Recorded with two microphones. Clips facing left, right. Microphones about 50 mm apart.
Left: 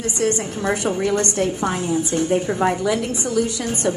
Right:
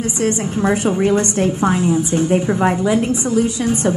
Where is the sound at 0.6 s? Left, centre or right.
Right.